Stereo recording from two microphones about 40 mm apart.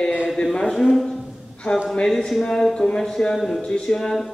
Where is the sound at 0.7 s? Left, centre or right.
Centre.